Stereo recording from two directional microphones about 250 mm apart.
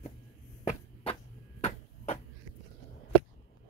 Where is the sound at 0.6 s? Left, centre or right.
Left.